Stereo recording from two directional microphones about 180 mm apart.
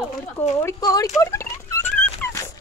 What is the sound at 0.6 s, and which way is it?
Speech, 15° left (ahead or behind).